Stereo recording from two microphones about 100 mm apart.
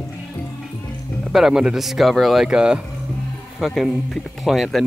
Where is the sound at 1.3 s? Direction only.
5° right (ahead or behind).